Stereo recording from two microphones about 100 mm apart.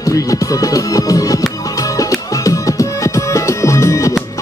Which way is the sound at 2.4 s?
35° left (ahead or behind).